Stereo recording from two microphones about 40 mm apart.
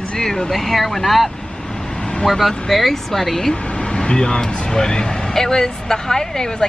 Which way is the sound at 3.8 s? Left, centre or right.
Left.